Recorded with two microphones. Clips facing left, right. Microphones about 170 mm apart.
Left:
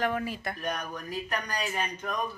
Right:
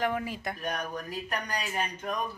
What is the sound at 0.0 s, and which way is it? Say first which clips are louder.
Speech: even; 15° right (ahead or behind).